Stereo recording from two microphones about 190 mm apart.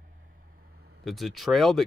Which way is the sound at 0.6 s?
55° right (ahead or behind).